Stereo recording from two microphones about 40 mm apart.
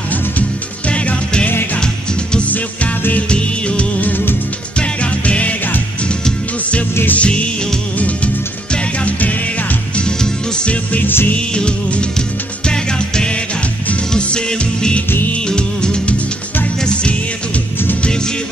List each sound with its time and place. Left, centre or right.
0.8 s music: left
3.2 s music: left
9.9 s music: left
10.7 s music: left
11.3 s music: left